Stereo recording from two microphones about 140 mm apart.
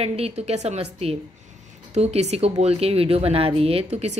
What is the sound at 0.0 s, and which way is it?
Speech, 45° right (ahead or behind).